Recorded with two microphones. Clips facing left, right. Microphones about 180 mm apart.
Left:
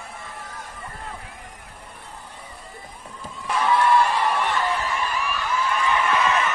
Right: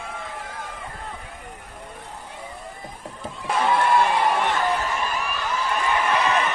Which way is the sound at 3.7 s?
50° right (ahead or behind).